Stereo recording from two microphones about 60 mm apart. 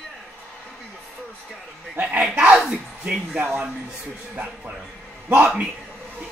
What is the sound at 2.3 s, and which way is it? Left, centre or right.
Speech, centre.